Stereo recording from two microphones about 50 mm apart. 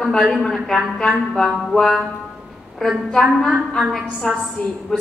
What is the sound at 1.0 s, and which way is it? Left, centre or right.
A woman's voice, centre.